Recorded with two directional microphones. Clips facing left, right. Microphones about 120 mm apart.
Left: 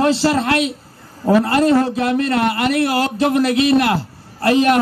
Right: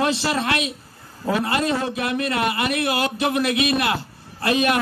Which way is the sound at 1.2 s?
25° left (ahead or behind).